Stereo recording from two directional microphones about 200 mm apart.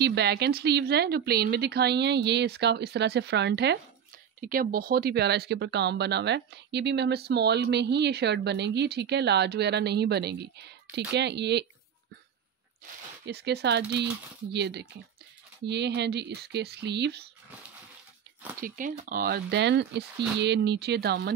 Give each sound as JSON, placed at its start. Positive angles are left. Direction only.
{"t": 0.0, "sound": "speech", "side_deg": -55}
{"t": 4.4, "sound": "speech", "side_deg": -45}
{"t": 13.3, "sound": "speech", "side_deg": -55}
{"t": 18.6, "sound": "speech", "side_deg": -45}